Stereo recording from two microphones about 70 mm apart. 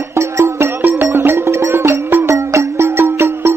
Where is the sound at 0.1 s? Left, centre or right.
Right.